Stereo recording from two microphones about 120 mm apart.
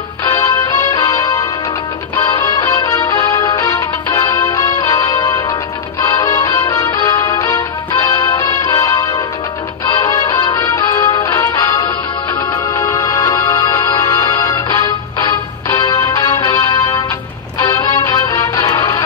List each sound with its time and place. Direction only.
0.2 s music: 20° left (ahead or behind)